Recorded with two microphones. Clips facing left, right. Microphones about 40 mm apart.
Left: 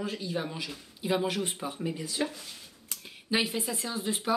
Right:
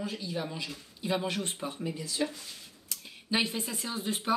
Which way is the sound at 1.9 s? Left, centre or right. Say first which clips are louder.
Left 1 dB; left.